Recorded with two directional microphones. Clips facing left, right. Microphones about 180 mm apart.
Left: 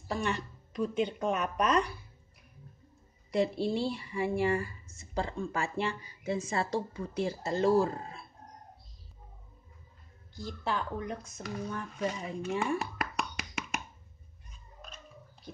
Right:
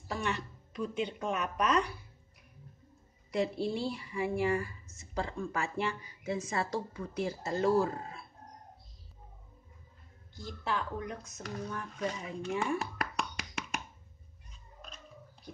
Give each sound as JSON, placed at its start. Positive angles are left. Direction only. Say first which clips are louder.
{"t": 0.1, "sound": "a woman's voice", "louder": "left 2 dB", "side_deg": 35}
{"t": 3.3, "sound": "speech", "louder": "left 3 dB", "side_deg": 30}
{"t": 10.3, "sound": "speech", "louder": "left 1 dB", "side_deg": 35}
{"t": 11.4, "sound": "speech", "louder": "left 2 dB", "side_deg": 10}
{"t": 12.0, "sound": "a sound", "louder": "left 2 dB", "side_deg": 5}